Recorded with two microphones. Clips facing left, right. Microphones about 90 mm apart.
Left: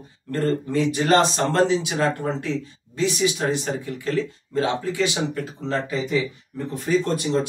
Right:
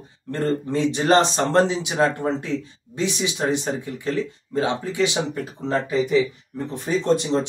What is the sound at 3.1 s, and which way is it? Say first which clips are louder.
Speech: left 1 dB; 20° right (ahead or behind).